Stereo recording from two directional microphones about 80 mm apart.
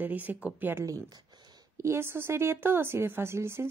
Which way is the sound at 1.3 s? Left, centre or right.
Right.